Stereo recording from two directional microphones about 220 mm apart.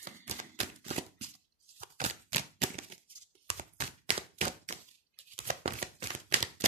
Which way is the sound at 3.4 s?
25° right (ahead or behind).